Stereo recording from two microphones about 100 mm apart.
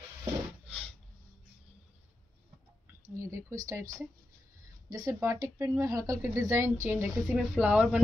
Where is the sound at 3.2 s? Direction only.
30° right (ahead or behind).